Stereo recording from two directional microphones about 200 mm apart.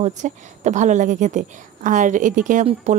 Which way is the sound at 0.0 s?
35° right (ahead or behind).